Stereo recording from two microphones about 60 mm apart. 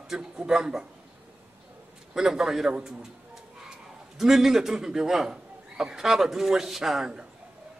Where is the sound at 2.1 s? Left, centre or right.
Centre.